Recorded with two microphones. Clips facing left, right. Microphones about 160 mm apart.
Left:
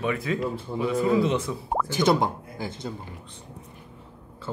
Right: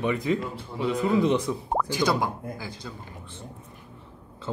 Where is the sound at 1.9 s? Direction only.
20° left (ahead or behind).